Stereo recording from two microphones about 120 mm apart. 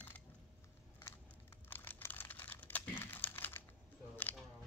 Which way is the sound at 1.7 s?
15° left (ahead or behind).